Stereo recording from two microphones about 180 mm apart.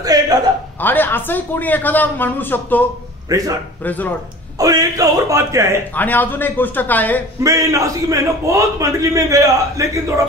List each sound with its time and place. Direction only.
0.0 s a sound: 20° right (ahead or behind)
0.7 s speech: 10° left (ahead or behind)
3.3 s a man's voice: 20° right (ahead or behind)
3.8 s speech: 10° left (ahead or behind)
4.6 s a man's voice: 20° right (ahead or behind)
5.9 s speech: 10° left (ahead or behind)
7.4 s a man's voice: 15° right (ahead or behind)